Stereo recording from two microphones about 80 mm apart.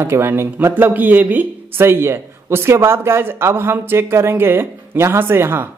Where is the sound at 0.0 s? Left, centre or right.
Right.